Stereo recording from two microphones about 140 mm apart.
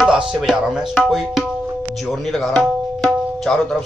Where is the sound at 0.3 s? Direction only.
5° right (ahead or behind).